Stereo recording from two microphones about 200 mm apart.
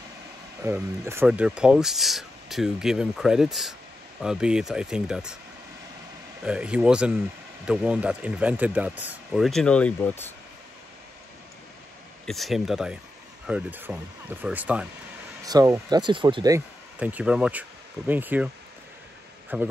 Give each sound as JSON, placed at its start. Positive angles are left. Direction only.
{"t": 0.7, "sound": "speech", "side_deg": -10}
{"t": 6.4, "sound": "speech", "side_deg": -5}
{"t": 12.3, "sound": "speech", "side_deg": 0}
{"t": 17.0, "sound": "speech", "side_deg": -5}
{"t": 19.5, "sound": "speech", "side_deg": -10}